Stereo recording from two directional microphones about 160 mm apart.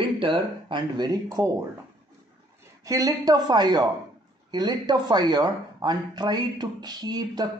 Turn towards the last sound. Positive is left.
turn(degrees=-25)  # may be behind; listen again after turning